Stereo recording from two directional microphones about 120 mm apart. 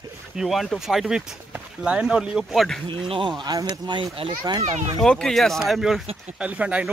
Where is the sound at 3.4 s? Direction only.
30° right (ahead or behind).